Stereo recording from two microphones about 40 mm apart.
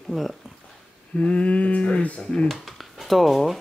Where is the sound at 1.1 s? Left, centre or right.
Left.